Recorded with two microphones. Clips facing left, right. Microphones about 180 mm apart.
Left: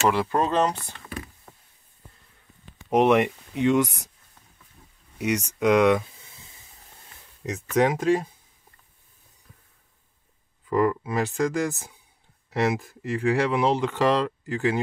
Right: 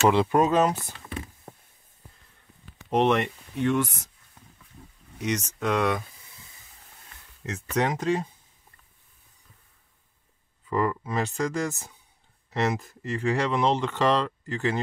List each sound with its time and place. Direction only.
0.1 s speech: 15° right (ahead or behind)
1.0 s a sound: 25° right (ahead or behind)
2.9 s speech: 10° left (ahead or behind)
5.2 s speech: 10° left (ahead or behind)
7.4 s speech: 10° left (ahead or behind)
10.7 s speech: 10° left (ahead or behind)